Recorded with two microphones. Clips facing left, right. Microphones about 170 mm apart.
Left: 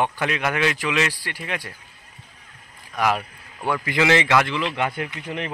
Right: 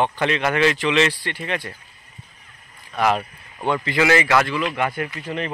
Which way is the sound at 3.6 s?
20° right (ahead or behind).